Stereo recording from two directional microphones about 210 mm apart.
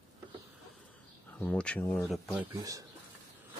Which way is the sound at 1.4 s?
5° left (ahead or behind).